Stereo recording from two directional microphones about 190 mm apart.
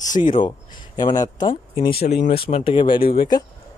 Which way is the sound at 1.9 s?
55° left (ahead or behind).